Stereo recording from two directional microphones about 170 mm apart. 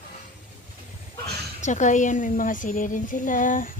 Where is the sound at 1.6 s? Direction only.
45° left (ahead or behind).